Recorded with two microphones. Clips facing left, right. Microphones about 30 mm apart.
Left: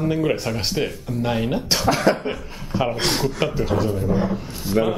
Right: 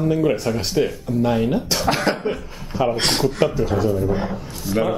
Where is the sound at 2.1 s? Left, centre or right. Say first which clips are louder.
Left 3 dB; right.